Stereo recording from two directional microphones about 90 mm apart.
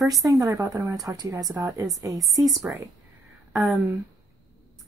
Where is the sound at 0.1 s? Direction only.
40° right (ahead or behind).